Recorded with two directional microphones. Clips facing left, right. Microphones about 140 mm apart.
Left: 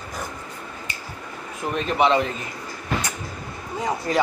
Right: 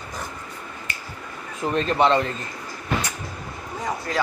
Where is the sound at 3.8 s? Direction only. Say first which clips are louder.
Left 3 dB; 15° left (ahead or behind).